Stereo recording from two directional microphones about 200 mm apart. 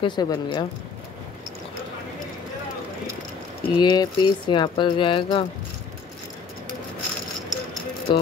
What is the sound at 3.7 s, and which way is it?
Speech, 20° left (ahead or behind).